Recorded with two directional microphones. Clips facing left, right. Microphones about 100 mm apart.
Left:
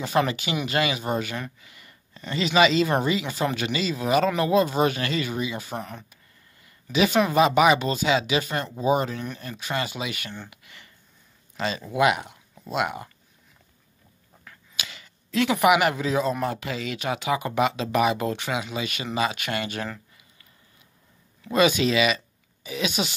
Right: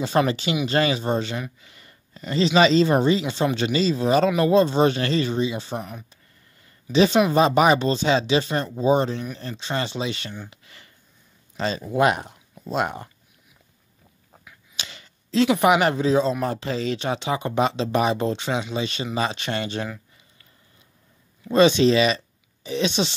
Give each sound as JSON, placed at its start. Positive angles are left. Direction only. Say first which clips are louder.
{"t": 0.2, "sound": "speech", "louder": "right 2 dB", "side_deg": -35}
{"t": 5.8, "sound": "speech", "louder": "right 1 dB", "side_deg": -10}
{"t": 6.6, "sound": "a sound", "louder": "right 4 dB", "side_deg": -30}
{"t": 7.2, "sound": "speech", "louder": "right 1 dB", "side_deg": -35}
{"t": 10.5, "sound": "a sound", "louder": "even", "side_deg": -35}
{"t": 11.5, "sound": "speech", "louder": "right 3 dB", "side_deg": -35}
{"t": 14.8, "sound": "speech", "louder": "even", "side_deg": -30}
{"t": 21.5, "sound": "speech", "louder": "right 5 dB", "side_deg": -30}